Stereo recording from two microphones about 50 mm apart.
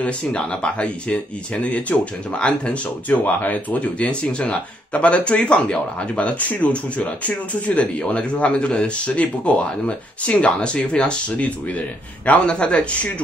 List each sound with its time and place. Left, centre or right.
0.0 s speech: left